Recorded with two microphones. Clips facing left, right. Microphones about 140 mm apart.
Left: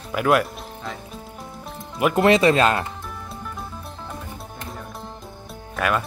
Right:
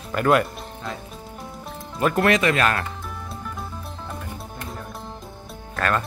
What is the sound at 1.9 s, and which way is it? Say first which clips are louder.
Speech: left 1 dB; 15° left (ahead or behind).